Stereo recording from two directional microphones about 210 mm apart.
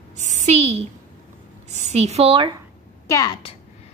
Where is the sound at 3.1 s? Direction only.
20° left (ahead or behind).